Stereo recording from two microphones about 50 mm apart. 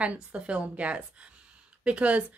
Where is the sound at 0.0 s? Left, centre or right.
Right.